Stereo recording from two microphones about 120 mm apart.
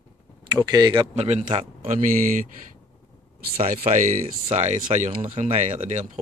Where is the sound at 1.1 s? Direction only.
65° right (ahead or behind).